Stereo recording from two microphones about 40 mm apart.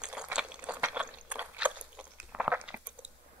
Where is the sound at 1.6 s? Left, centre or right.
Right.